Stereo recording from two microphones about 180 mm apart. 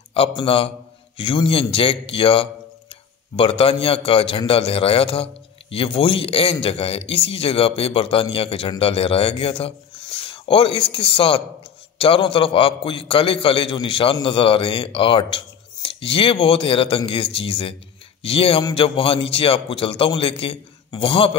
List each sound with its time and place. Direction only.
0.1 s a man's voice: 30° left (ahead or behind)